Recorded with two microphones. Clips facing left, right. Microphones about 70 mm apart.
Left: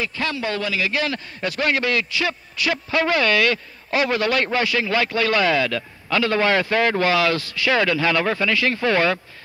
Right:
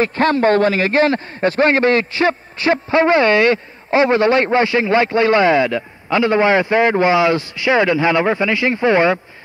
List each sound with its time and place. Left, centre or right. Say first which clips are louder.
0.0 s a man's voice: right 11 dB; right